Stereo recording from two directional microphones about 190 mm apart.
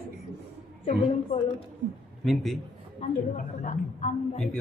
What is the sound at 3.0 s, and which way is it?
A woman's voice, 40° left (ahead or behind).